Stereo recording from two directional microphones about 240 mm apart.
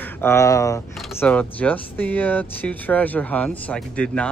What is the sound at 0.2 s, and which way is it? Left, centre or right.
Speech, centre.